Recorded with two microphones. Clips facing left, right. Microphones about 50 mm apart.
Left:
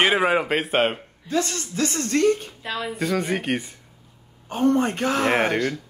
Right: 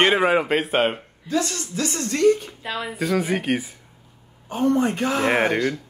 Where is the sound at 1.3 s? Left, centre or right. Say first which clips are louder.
Even; left.